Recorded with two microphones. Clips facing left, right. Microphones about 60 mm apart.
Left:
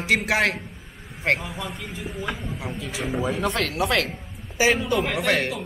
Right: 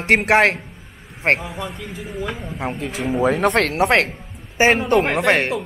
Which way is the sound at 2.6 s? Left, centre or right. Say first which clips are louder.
Right 9 dB; right.